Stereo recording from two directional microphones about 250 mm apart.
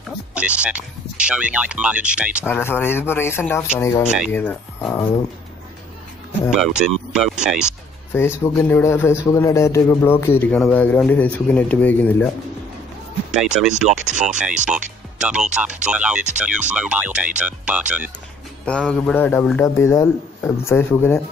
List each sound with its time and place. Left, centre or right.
0.3 s speech: centre
2.4 s a man's voice: centre
6.5 s speech: centre
8.1 s a man's voice: centre
13.3 s speech: centre
13.8 s speech: right
15.1 s a man's voice: centre